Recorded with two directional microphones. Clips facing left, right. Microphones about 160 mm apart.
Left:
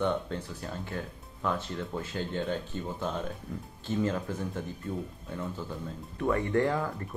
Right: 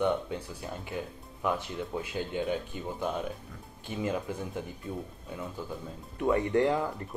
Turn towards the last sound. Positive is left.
turn(degrees=-15)  # may be behind; listen again after turning